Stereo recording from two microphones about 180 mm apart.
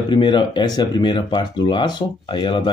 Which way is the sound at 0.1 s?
25° left (ahead or behind).